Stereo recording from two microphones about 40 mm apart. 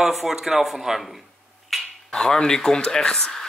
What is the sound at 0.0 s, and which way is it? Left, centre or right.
Speech, centre.